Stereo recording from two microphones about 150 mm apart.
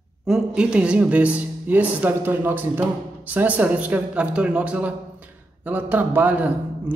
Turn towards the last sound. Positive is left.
turn(degrees=-10)  # may be behind; listen again after turning